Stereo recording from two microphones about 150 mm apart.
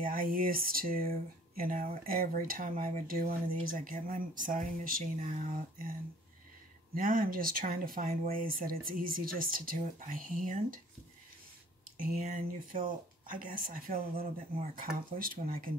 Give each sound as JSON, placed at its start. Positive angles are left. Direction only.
{"t": 0.0, "sound": "speech", "side_deg": -70}
{"t": 7.0, "sound": "speech", "side_deg": -70}
{"t": 12.0, "sound": "speech", "side_deg": -65}